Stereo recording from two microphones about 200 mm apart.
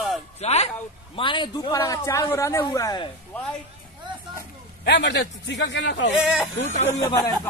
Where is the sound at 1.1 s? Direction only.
25° left (ahead or behind).